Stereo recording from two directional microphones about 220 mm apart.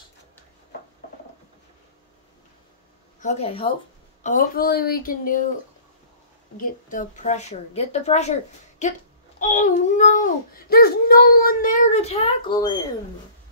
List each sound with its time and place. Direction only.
3.2 s speech: 30° left (ahead or behind)
4.2 s a child's voice: 35° left (ahead or behind)
6.5 s a child's voice: 40° left (ahead or behind); by 12.7 s 20° left (ahead or behind)